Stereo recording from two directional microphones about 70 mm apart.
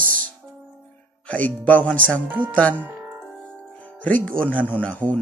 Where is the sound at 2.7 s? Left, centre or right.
Right.